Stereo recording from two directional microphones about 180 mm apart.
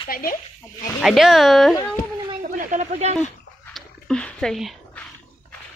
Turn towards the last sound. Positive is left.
turn(degrees=0)  # may be behind; listen again after turning